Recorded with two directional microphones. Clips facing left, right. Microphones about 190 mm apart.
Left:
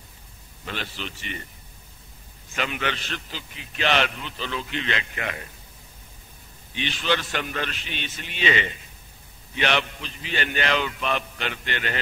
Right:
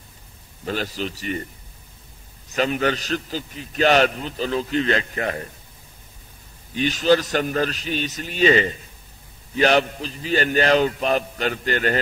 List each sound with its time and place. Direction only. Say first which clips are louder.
0.7 s a man's voice: right 8 dB; 40° right (ahead or behind)
2.5 s a man's voice: right 7 dB; 40° right (ahead or behind)
6.7 s a man's voice: right 8 dB; 40° right (ahead or behind)